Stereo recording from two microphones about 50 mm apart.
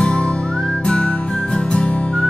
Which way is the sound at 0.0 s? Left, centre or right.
Left.